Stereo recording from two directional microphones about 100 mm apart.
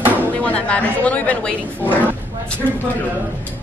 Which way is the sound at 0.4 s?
10° left (ahead or behind).